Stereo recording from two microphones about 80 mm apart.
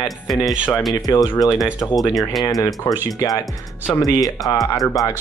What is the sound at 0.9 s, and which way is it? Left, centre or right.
Speech, left.